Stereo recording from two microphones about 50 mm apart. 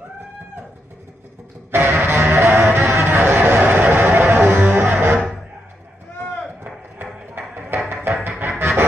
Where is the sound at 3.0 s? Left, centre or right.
Right.